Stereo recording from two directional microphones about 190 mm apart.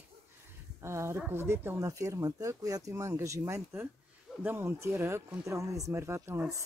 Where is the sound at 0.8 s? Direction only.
15° right (ahead or behind).